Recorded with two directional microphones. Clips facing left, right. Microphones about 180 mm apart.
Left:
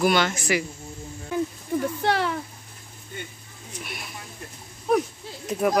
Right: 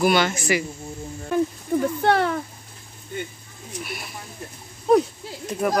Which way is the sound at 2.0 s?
55° right (ahead or behind).